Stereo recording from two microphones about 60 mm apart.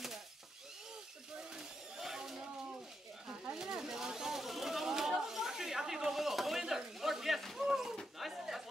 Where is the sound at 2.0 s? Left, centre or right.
Centre.